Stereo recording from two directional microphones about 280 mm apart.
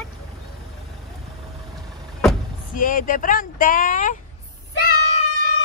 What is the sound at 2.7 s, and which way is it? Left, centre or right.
Speech, left.